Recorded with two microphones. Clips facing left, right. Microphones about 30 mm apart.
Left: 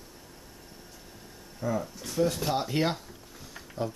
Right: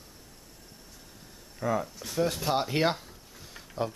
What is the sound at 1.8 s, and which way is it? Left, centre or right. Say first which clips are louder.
Speech: left 1 dB; centre.